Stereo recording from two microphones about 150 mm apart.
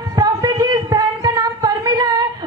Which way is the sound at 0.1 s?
25° right (ahead or behind).